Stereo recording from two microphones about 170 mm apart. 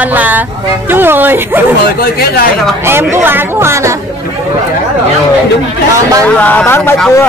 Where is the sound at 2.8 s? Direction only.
15° right (ahead or behind).